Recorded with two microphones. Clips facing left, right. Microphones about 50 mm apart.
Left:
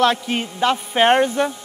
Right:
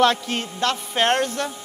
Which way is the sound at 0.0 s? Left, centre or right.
Centre.